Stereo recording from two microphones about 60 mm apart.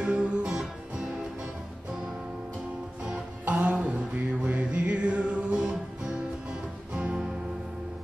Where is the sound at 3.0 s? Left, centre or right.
Centre.